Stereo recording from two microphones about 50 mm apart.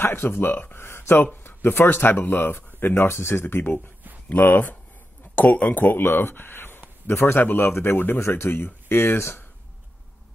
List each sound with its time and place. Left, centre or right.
0.0 s speech: left
0.7 s speech: left
2.9 s speech: left
4.3 s speech: left